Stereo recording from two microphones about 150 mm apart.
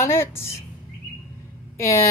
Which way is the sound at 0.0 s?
15° left (ahead or behind).